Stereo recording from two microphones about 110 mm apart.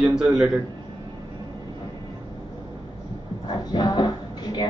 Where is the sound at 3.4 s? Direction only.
45° left (ahead or behind).